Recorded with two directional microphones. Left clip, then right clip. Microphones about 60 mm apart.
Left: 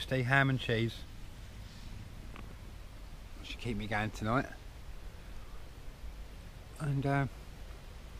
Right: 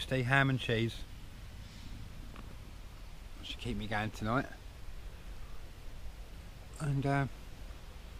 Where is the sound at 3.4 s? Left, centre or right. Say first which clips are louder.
Left 1 dB; left.